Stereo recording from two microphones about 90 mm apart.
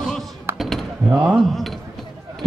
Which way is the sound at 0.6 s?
5° left (ahead or behind).